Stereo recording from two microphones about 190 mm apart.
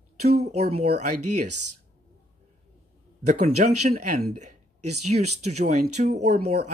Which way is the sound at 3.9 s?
50° right (ahead or behind).